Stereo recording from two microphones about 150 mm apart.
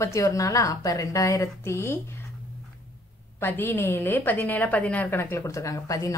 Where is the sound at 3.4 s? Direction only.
15° left (ahead or behind).